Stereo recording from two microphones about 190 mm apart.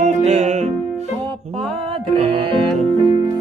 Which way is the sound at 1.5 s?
35° right (ahead or behind).